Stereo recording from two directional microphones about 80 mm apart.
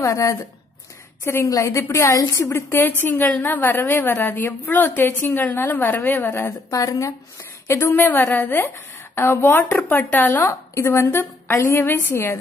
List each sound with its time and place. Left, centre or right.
0.0 s a woman's voice: left
6.7 s speech: left
7.6 s a woman's voice: left